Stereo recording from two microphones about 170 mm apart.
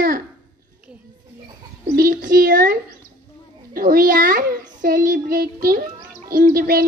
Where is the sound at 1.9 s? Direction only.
55° right (ahead or behind).